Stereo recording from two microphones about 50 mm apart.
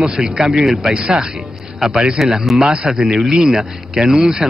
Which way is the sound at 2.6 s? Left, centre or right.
Centre.